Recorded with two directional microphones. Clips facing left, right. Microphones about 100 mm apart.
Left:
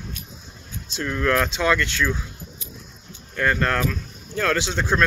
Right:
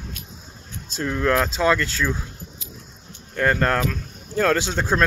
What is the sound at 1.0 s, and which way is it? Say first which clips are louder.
Speech: right 1 dB; 20° right (ahead or behind).